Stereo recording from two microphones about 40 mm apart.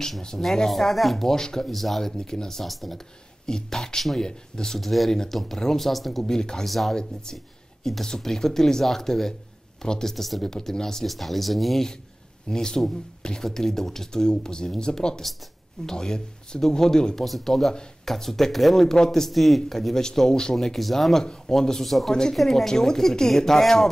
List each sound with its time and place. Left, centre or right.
0.4 s speech: centre
1.7 s speech: centre
2.6 s speech: centre
3.4 s speech: centre
6.2 s speech: centre
6.7 s speech: centre
7.0 s speech: centre
10.1 s speech: centre
12.4 s speech: centre
17.2 s speech: centre
19.3 s speech: centre
20.5 s speech: centre